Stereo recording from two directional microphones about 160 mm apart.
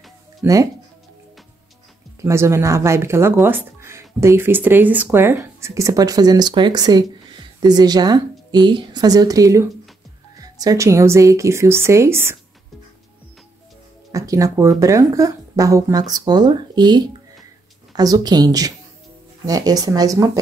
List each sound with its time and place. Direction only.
0.4 s speech: 20° right (ahead or behind)
2.2 s speech: 15° right (ahead or behind)
14.1 s speech: 20° right (ahead or behind)